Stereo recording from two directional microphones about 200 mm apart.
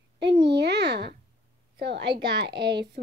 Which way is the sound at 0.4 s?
60° right (ahead or behind).